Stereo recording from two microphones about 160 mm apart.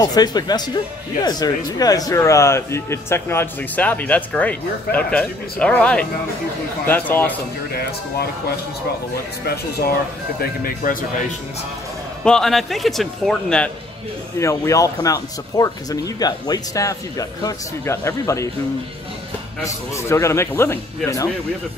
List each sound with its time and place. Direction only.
0.0 s speech: 25° left (ahead or behind)
1.8 s a man's voice: 25° left (ahead or behind)
7.7 s speech: 80° left
10.4 s speech: 65° left (ahead or behind)
12.3 s a man's voice: centre (ahead or behind)
14.4 s speech: 20° left (ahead or behind)
19.6 s a man's voice: 15° left (ahead or behind)